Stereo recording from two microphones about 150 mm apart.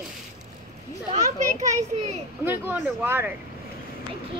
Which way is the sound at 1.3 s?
55° right (ahead or behind).